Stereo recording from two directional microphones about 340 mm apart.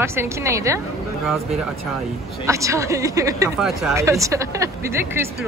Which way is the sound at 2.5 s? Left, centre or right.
Centre.